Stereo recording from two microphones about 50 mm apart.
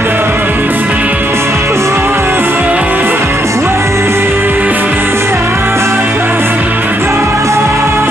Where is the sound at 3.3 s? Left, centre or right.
Right.